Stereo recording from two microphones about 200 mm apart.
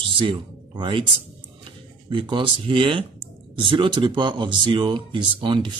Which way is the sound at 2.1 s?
25° right (ahead or behind).